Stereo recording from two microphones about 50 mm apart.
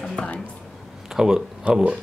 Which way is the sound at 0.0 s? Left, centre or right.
Centre.